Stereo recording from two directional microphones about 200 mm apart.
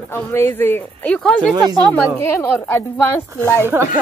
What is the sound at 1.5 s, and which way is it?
Speech, 20° right (ahead or behind).